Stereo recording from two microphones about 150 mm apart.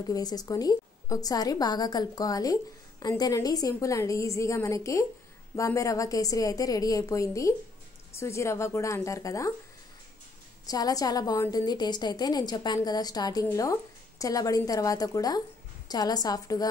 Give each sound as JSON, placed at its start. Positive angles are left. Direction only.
{"t": 0.0, "sound": "a woman's voice", "side_deg": 25}
{"t": 10.7, "sound": "a woman's voice", "side_deg": 25}